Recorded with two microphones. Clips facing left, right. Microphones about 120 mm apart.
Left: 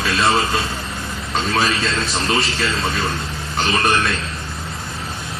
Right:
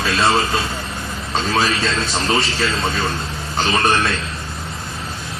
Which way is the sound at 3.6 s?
30° right (ahead or behind).